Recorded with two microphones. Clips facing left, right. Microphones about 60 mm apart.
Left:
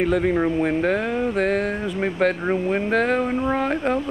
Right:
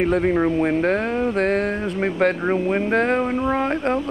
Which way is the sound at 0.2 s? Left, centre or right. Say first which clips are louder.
Right 1 dB; centre.